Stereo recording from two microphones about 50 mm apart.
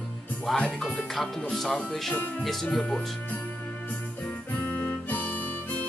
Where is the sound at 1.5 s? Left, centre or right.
Centre.